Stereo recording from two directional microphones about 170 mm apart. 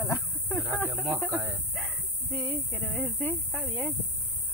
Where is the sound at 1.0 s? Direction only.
10° right (ahead or behind).